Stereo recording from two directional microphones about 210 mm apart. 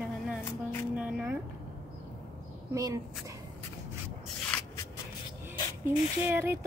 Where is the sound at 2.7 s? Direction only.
15° right (ahead or behind).